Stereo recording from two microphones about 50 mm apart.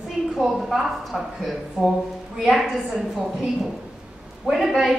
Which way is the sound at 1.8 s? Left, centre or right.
Right.